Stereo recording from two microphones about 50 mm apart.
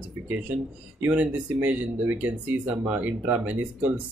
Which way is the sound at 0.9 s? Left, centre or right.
Right.